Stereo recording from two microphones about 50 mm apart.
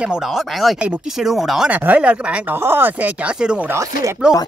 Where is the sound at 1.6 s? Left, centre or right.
Right.